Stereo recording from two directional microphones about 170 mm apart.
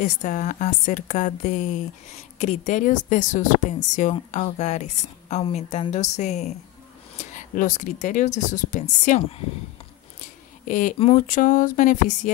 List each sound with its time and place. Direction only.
0.0 s a woman's voice: 45° left (ahead or behind)
10.7 s a woman's voice: 50° left (ahead or behind)